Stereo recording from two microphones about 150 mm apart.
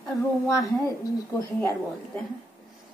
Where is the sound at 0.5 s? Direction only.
20° left (ahead or behind).